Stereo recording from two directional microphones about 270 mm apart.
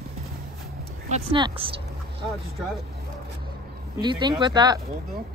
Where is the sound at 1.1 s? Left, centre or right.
Centre.